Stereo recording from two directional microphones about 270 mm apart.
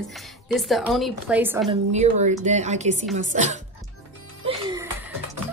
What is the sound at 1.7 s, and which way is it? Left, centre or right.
A woman's voice, right.